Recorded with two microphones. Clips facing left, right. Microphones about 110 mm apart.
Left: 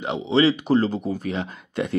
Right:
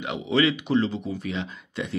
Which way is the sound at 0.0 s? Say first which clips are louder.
Left 4 dB; 30° left (ahead or behind).